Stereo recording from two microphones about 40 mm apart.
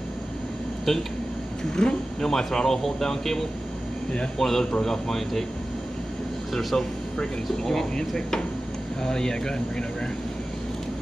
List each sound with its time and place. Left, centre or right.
0.9 s speech: centre
6.5 s speech: centre